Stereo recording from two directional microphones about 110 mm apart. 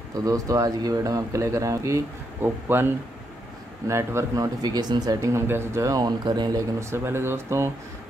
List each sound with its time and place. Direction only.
0.1 s speech: 30° right (ahead or behind)
6.8 s speech: 25° right (ahead or behind)